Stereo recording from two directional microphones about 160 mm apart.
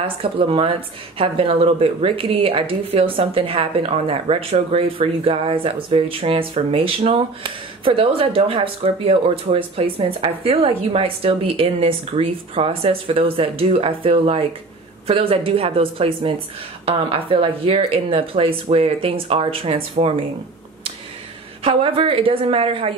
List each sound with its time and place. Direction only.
0.2 s speech: 35° right (ahead or behind)
21.6 s speech: 35° right (ahead or behind)